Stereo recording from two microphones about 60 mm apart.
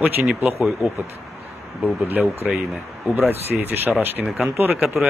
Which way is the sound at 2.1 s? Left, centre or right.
Right.